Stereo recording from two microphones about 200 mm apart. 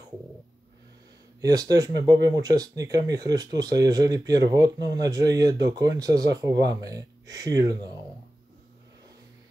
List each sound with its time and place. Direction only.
1.5 s speech: 20° right (ahead or behind)